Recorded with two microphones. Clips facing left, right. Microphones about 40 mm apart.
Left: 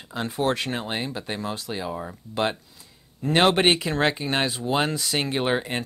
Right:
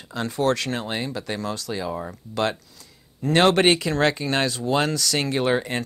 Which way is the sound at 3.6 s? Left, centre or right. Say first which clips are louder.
Right 2 dB; left.